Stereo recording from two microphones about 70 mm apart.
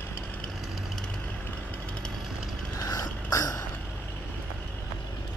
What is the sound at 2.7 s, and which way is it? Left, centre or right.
Mechanisms, left.